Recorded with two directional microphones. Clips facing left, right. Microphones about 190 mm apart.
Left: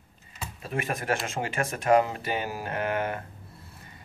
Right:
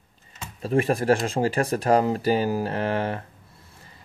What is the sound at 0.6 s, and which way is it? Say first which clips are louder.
Speech: right 10 dB; 35° right (ahead or behind).